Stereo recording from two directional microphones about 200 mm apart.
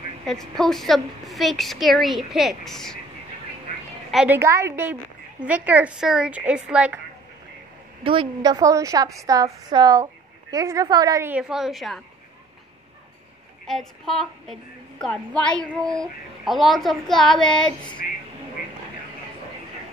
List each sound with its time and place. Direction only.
0.2 s a woman's voice: centre (ahead or behind)
4.1 s a woman's voice: 5° right (ahead or behind)
8.0 s a woman's voice: 25° right (ahead or behind); by 12.0 s centre (ahead or behind)
13.7 s a woman's voice: centre (ahead or behind)